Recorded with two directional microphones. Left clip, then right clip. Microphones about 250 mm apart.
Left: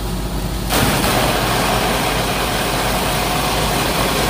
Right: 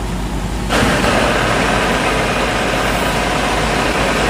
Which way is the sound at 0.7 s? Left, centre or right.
Left.